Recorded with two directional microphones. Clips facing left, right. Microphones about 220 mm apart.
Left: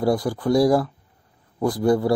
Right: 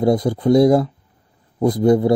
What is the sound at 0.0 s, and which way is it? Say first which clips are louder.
Speech: right 5 dB; 20° right (ahead or behind).